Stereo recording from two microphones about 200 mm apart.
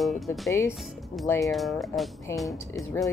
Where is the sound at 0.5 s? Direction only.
10° left (ahead or behind).